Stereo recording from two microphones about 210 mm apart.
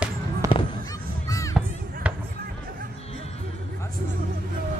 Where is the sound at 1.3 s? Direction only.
15° left (ahead or behind).